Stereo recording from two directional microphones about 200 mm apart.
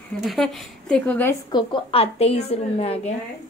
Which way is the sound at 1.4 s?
25° left (ahead or behind).